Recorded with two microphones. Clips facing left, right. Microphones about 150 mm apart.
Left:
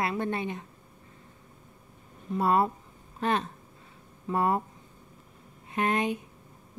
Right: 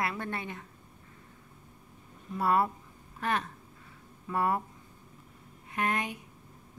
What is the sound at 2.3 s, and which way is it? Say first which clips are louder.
Speech: left 3 dB; 25° left (ahead or behind).